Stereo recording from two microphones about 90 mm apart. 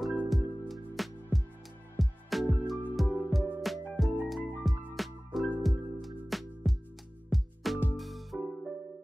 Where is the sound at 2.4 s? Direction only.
20° left (ahead or behind).